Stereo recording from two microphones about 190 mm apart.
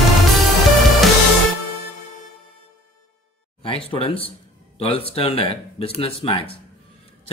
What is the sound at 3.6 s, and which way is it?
Speech, 30° left (ahead or behind).